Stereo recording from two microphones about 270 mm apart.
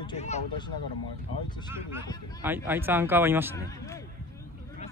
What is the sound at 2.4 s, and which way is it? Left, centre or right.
Speech, centre.